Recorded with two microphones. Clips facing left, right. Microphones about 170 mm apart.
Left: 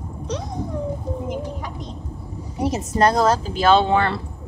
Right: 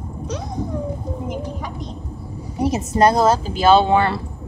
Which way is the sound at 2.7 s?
10° right (ahead or behind).